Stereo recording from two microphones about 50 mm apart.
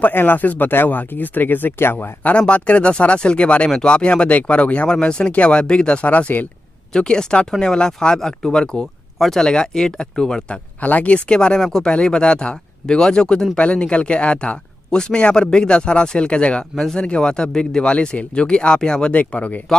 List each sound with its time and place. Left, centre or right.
0.0 s speech: left
2.2 s speech: left
6.0 s speech: left
6.9 s speech: centre
10.8 s speech: left
16.7 s speech: centre
17.0 s speech: centre
19.1 s speech: left